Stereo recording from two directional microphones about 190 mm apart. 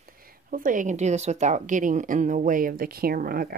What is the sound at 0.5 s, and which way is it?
A woman's voice, 45° right (ahead or behind).